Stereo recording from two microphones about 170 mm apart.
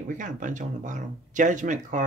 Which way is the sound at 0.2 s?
50° right (ahead or behind).